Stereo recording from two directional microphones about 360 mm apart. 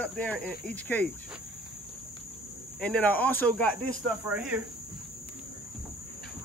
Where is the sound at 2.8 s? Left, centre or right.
Centre.